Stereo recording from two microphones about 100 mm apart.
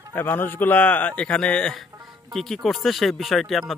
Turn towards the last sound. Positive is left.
turn(degrees=0)  # may be behind; listen again after turning